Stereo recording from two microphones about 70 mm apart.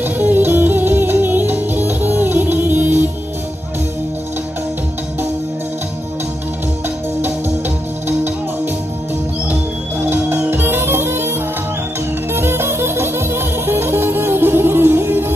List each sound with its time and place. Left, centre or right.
0.0 s music: right
9.5 s music: right
12.4 s music: right